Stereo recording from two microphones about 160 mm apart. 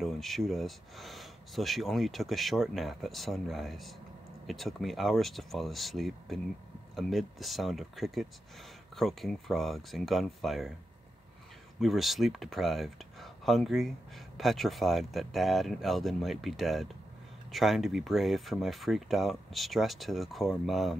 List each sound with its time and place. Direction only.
0.0 s speech: centre (ahead or behind)
11.8 s speech: centre (ahead or behind)